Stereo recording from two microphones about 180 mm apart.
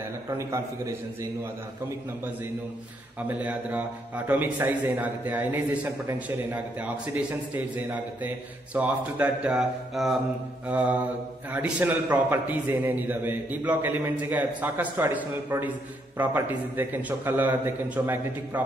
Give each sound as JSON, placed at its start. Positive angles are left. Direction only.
{"t": 0.4, "sound": "a man's voice", "side_deg": -20}
{"t": 3.3, "sound": "a man's voice", "side_deg": -10}